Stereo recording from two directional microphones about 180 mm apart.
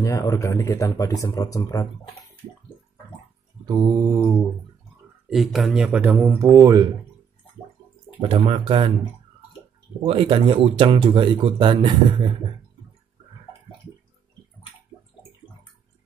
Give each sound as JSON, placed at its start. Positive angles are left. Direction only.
{"t": 0.0, "sound": "speech", "side_deg": 15}
{"t": 3.6, "sound": "speech", "side_deg": -20}
{"t": 5.3, "sound": "speech", "side_deg": 0}
{"t": 6.1, "sound": "speech", "side_deg": -15}
{"t": 8.2, "sound": "speech", "side_deg": -30}
{"t": 10.0, "sound": "speech", "side_deg": -30}